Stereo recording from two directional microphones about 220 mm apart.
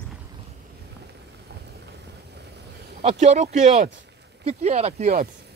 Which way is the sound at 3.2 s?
30° right (ahead or behind).